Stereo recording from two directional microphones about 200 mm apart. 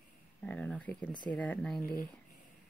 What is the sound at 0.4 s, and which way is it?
Speech, 5° left (ahead or behind).